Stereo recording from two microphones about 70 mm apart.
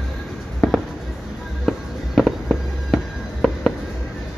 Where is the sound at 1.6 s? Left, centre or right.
Centre.